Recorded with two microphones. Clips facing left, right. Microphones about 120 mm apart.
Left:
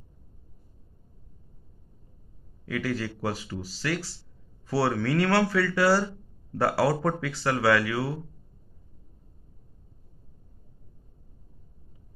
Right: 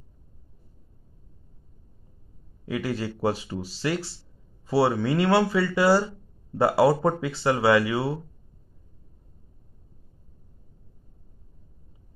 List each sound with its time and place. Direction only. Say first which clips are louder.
2.6 s speech: right 1 dB; 25° right (ahead or behind)